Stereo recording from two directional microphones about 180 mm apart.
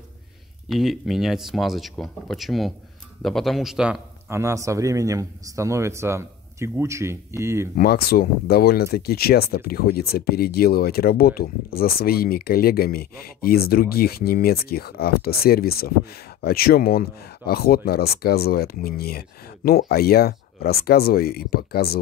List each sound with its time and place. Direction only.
0.7 s a man's voice: centre (ahead or behind)
4.4 s speech: 15° right (ahead or behind)
7.7 s speech: 60° left (ahead or behind)